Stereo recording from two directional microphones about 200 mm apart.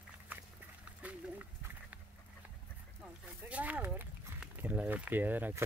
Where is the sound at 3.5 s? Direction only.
5° right (ahead or behind).